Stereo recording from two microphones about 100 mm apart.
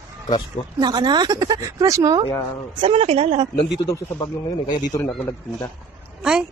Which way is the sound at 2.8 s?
90° right.